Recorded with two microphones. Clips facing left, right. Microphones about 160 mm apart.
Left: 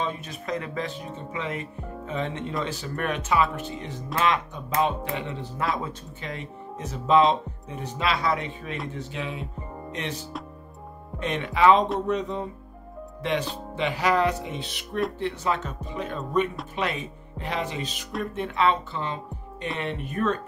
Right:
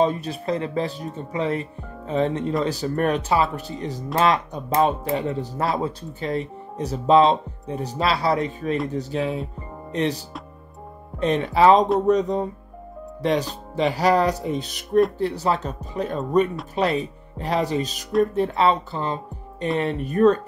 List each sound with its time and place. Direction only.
0.0 s speech: 35° right (ahead or behind)